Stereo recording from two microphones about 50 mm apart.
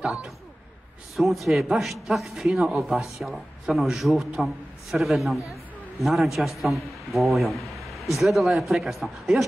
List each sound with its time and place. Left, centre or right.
0.0 s speech: centre
1.1 s a man's voice: centre